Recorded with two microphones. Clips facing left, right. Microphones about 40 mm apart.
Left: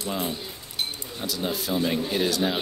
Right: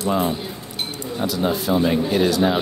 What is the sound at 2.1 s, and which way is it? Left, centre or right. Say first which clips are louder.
Speech: right 7 dB; centre.